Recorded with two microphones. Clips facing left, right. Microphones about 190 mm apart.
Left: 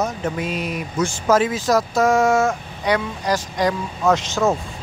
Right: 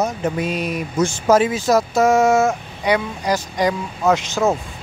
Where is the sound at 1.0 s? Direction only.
20° right (ahead or behind).